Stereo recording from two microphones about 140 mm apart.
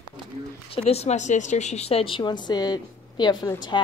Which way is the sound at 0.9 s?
50° left (ahead or behind).